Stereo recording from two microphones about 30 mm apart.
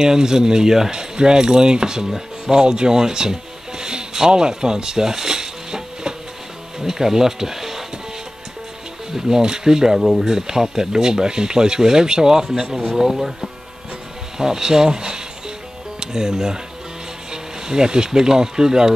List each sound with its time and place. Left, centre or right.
0.0 s speech: right
9.1 s speech: right
13.1 s speech: centre
14.4 s speech: centre